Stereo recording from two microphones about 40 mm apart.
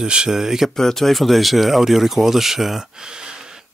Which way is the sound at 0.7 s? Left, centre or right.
Centre.